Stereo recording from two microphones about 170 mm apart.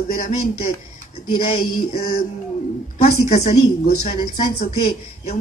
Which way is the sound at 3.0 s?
45° left (ahead or behind).